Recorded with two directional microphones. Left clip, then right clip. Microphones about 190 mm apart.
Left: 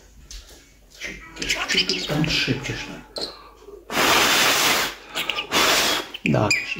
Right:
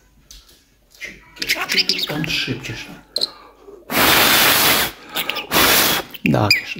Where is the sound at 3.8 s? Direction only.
60° right (ahead or behind).